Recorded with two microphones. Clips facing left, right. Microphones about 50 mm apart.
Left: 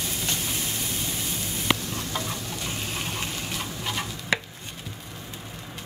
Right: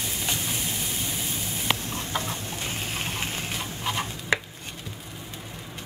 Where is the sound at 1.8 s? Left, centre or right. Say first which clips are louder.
Right 1 dB; right.